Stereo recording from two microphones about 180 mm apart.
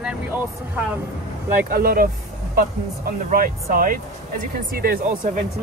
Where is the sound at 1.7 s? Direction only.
55° right (ahead or behind).